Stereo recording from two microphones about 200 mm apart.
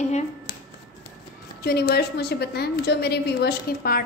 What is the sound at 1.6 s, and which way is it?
A woman's voice, 55° left (ahead or behind).